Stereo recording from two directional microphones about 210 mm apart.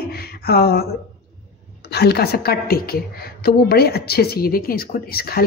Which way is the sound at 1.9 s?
50° left (ahead or behind).